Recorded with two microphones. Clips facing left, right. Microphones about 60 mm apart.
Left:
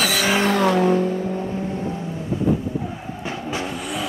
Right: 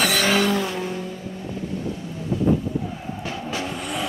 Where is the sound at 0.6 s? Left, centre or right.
Left.